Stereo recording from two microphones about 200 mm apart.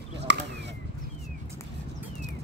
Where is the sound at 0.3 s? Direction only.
65° right (ahead or behind).